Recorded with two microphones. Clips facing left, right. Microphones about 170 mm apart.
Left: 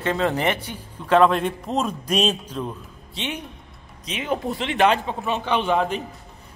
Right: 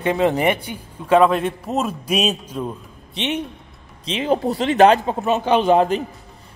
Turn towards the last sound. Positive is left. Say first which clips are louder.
# right 6 dB
turn(degrees=-40)  # may be behind; listen again after turning